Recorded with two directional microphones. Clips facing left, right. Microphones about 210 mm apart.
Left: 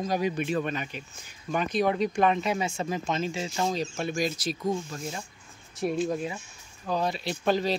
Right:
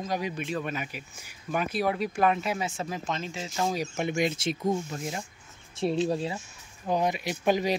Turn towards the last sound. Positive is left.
turn(degrees=-15)  # may be behind; listen again after turning